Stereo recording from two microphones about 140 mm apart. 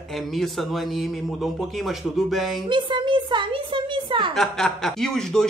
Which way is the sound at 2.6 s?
35° right (ahead or behind).